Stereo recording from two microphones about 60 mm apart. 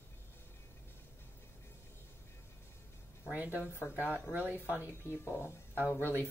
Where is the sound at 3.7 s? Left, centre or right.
Left.